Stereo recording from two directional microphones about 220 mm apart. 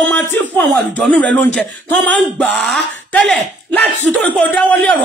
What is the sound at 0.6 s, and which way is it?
A man's voice, 5° left (ahead or behind).